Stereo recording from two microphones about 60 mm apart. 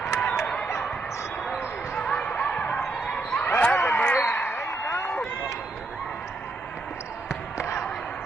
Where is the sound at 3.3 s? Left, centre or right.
Left.